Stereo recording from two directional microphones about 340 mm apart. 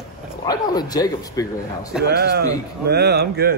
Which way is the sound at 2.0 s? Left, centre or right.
Right.